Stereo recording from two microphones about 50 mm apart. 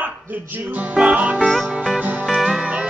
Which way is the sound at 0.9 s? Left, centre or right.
Right.